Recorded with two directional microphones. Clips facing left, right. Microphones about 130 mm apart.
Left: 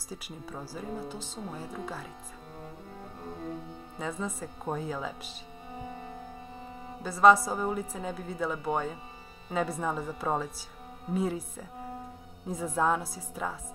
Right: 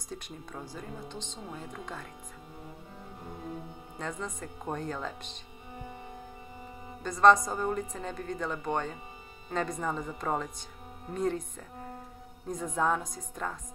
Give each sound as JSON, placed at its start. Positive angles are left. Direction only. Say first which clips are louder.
{"t": 0.1, "sound": "speech", "louder": "left 1 dB", "side_deg": 5}
{"t": 4.0, "sound": "speech", "louder": "left 2 dB", "side_deg": 5}
{"t": 7.0, "sound": "speech", "louder": "left 1 dB", "side_deg": 5}